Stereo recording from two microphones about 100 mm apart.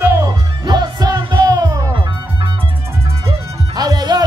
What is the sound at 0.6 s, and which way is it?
Music, 45° right (ahead or behind).